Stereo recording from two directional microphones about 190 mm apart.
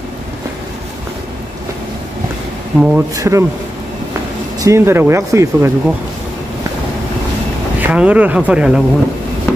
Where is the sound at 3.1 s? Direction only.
15° right (ahead or behind).